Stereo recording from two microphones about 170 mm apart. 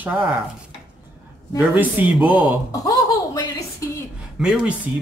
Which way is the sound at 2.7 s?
20° left (ahead or behind).